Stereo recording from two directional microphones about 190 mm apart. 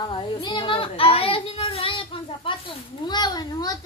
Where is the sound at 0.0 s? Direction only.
25° left (ahead or behind).